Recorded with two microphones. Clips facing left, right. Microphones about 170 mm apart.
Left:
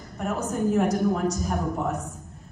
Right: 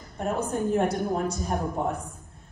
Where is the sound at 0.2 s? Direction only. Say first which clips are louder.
Left 1 dB; 30° right (ahead or behind).